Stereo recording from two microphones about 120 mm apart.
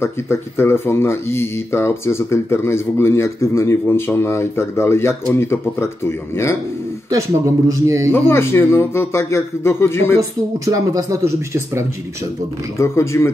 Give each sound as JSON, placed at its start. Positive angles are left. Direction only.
{"t": 0.0, "sound": "speech", "side_deg": 20}
{"t": 7.1, "sound": "speech", "side_deg": -25}
{"t": 8.1, "sound": "speech", "side_deg": 20}
{"t": 10.6, "sound": "speech", "side_deg": -25}
{"t": 12.7, "sound": "speech", "side_deg": 25}